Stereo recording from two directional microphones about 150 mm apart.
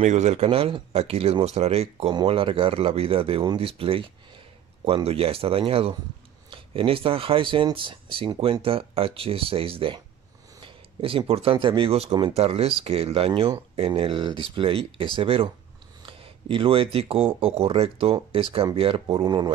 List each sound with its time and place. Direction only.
0.0 s speech: 50° right (ahead or behind)
19.2 s speech: 30° right (ahead or behind)